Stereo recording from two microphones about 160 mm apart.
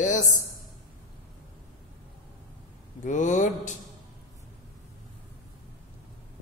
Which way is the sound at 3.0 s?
50° left (ahead or behind).